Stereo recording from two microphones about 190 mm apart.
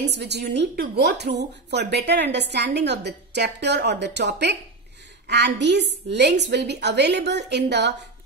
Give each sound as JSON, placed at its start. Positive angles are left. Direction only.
{"t": 0.1, "sound": "a woman's voice", "side_deg": -65}